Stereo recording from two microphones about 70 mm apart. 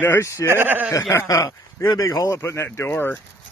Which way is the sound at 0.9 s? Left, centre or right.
Left.